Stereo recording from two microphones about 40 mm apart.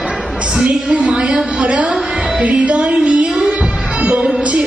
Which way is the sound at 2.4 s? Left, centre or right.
Right.